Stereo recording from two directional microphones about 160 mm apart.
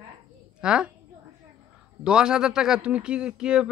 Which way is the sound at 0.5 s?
5° right (ahead or behind).